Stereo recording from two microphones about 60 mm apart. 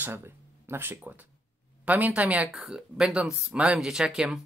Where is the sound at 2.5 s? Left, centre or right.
Centre.